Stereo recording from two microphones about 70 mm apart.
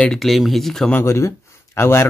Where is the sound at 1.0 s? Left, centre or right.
Left.